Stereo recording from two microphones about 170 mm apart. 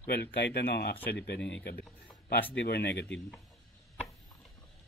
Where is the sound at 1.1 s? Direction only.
90° left; by 1.9 s 70° left (ahead or behind).